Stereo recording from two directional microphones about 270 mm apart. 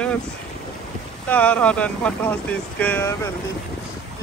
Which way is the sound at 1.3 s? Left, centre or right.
Centre.